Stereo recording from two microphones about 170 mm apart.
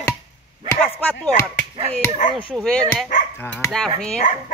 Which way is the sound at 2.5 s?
Centre (ahead or behind).